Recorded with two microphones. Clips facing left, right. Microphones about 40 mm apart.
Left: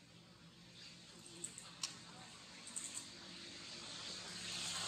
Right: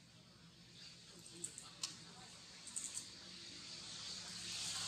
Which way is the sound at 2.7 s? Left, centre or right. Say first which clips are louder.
Left 1 dB; left.